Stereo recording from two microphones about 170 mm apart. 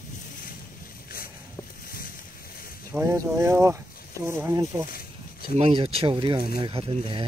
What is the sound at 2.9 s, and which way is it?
Speech, 15° right (ahead or behind).